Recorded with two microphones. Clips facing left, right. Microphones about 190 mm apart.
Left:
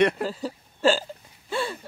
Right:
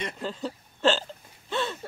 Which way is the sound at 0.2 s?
5° left (ahead or behind).